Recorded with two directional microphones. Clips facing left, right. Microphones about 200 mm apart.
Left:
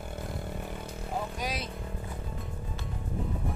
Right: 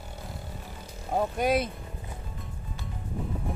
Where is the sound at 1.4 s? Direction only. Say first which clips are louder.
Right 10 dB; 55° right (ahead or behind).